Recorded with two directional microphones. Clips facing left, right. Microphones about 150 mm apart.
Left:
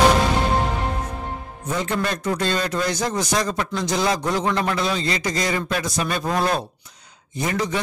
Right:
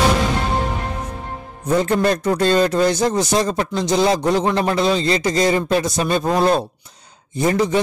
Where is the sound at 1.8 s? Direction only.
40° right (ahead or behind).